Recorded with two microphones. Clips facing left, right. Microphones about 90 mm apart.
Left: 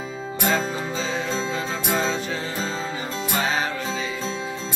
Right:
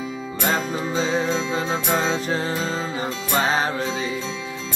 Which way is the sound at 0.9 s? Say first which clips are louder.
Right 7 dB; 35° right (ahead or behind).